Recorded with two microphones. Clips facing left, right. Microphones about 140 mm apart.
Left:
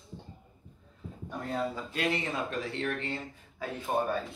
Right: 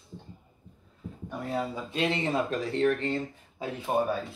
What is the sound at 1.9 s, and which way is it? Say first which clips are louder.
Speech: right 6 dB; 30° right (ahead or behind).